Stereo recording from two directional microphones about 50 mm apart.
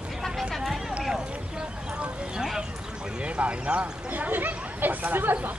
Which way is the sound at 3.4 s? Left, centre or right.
Right.